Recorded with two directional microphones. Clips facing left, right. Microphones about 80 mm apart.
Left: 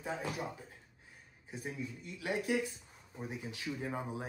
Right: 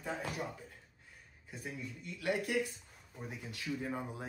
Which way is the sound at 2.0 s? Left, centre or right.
Left.